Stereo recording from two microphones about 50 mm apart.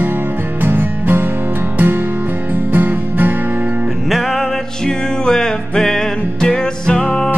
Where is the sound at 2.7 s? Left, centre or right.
Right.